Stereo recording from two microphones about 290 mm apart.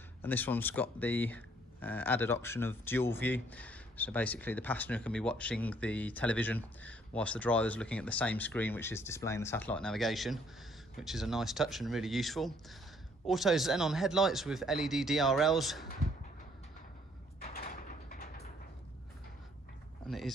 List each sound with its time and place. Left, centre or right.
0.2 s speech: centre
17.4 s sliding door: left